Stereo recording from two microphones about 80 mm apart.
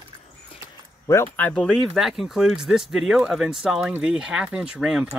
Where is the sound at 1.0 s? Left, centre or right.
Left.